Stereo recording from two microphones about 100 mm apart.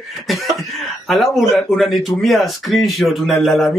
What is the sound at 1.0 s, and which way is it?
Speech, centre (ahead or behind).